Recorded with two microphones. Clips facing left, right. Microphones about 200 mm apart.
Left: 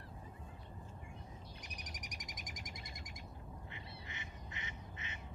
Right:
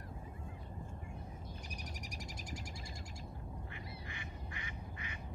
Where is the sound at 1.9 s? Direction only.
30° right (ahead or behind).